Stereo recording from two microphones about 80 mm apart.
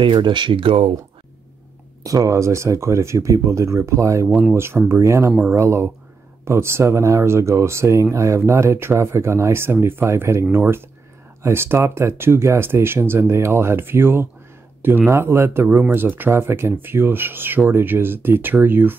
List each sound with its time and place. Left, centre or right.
0.0 s speech: right
2.0 s speech: right